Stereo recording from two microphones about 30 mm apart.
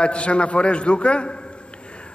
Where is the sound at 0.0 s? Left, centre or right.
Left.